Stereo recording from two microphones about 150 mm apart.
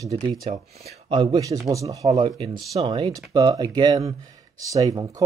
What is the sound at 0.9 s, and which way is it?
Speech, 40° right (ahead or behind).